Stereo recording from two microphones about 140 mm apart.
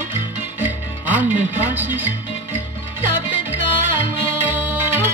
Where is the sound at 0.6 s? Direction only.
15° right (ahead or behind).